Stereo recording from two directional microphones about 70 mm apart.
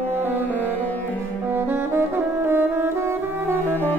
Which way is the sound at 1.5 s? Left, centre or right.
Right.